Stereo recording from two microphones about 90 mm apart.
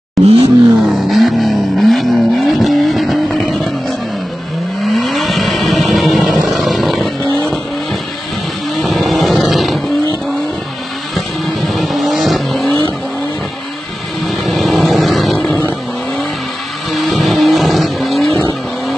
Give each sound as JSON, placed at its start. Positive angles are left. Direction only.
{"t": 0.2, "sound": "roar", "side_deg": 0}
{"t": 0.7, "sound": "vehicle", "side_deg": 0}
{"t": 4.8, "sound": "vehicle", "side_deg": 0}
{"t": 8.7, "sound": "vehicle", "side_deg": 0}
{"t": 11.1, "sound": "vehicle", "side_deg": 0}
{"t": 14.2, "sound": "vehicle", "side_deg": 0}
{"t": 16.9, "sound": "vehicle", "side_deg": 0}